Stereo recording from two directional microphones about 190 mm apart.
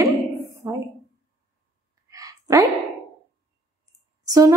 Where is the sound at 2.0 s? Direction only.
20° right (ahead or behind).